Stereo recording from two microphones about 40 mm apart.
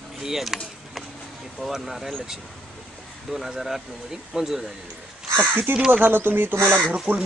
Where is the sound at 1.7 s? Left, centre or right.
Centre.